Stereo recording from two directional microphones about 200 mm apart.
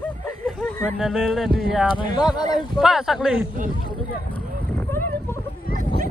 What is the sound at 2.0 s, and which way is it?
Speech, 20° left (ahead or behind).